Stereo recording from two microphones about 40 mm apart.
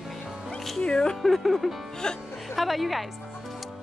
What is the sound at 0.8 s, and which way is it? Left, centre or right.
Speech, left.